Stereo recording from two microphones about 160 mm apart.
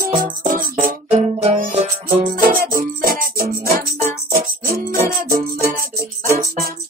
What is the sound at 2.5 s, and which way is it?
Music, 60° right (ahead or behind).